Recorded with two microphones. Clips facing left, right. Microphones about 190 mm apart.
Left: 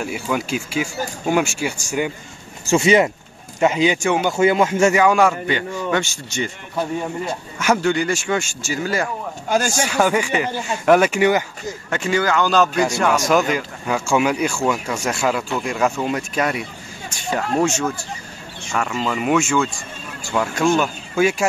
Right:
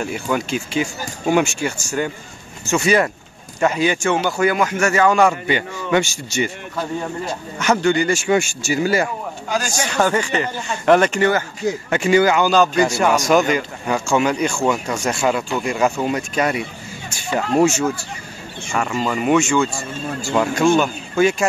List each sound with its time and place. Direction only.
0.0 s speech: 5° left (ahead or behind)
2.6 s speech: 25° left (ahead or behind)
4.9 s speech: 10° left (ahead or behind)
5.5 s a man's voice: 10° right (ahead or behind)
7.5 s a man's voice: 5° left (ahead or behind); by 8.9 s 10° right (ahead or behind)
9.8 s speech: 10° left (ahead or behind)
11.9 s a man's voice: 10° right (ahead or behind)
12.4 s a man's voice: centre (ahead or behind)